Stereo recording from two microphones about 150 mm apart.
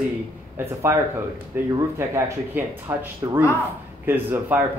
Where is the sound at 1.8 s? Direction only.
20° right (ahead or behind).